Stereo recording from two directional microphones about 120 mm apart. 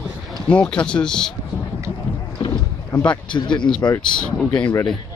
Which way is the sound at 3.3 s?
40° left (ahead or behind).